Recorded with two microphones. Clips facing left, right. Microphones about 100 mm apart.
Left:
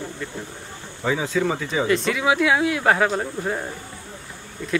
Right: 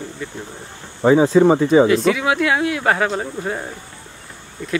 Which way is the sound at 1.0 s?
40° right (ahead or behind).